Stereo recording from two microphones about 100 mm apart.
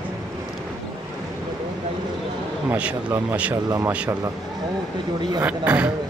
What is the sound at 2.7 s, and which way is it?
Speech, 15° right (ahead or behind).